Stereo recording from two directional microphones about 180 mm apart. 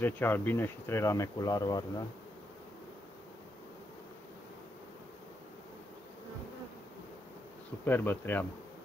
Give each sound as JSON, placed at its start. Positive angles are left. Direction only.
{"t": 0.0, "sound": "speech", "side_deg": 10}
{"t": 7.8, "sound": "speech", "side_deg": 10}